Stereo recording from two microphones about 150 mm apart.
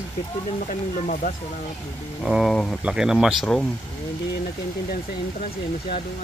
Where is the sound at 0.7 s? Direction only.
60° left (ahead or behind).